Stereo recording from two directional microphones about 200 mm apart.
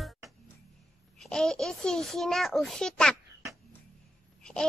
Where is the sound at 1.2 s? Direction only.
5° left (ahead or behind).